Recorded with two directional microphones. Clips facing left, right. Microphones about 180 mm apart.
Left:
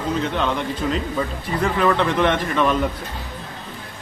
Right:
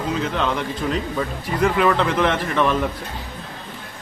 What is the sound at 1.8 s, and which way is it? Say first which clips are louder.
Speech: left 2 dB; centre (ahead or behind).